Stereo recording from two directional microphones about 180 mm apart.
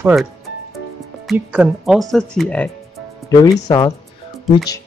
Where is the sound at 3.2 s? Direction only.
20° left (ahead or behind).